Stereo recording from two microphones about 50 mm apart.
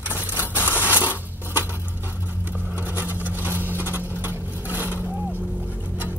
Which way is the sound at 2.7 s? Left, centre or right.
Right.